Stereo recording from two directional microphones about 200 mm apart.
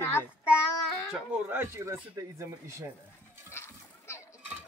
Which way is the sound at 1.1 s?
10° right (ahead or behind).